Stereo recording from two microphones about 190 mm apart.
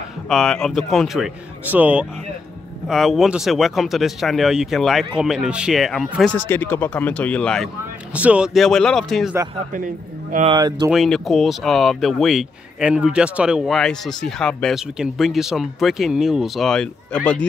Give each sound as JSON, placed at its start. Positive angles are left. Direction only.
{"t": 0.3, "sound": "speech", "side_deg": 0}
{"t": 6.3, "sound": "speech", "side_deg": 10}
{"t": 10.5, "sound": "speech", "side_deg": -25}
{"t": 10.9, "sound": "speech", "side_deg": 0}